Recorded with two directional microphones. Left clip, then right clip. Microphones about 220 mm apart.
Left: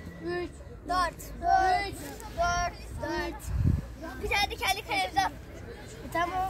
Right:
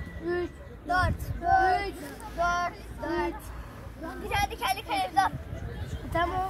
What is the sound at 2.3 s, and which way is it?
Child singing, 50° left (ahead or behind).